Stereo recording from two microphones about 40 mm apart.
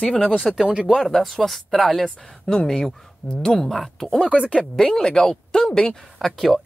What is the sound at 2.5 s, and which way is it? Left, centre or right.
Speech, centre.